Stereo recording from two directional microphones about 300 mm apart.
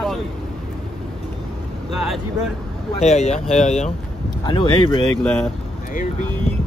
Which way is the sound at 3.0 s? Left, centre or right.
Left.